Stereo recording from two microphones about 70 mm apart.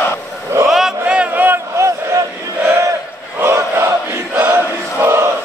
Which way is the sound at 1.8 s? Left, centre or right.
Right.